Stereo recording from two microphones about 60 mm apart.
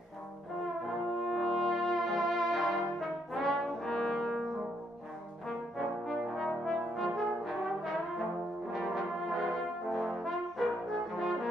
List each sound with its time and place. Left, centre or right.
1.2 s brass instrument: centre
6.0 s brass instrument: centre